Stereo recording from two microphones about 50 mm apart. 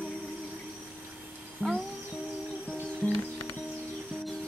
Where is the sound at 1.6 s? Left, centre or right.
Right.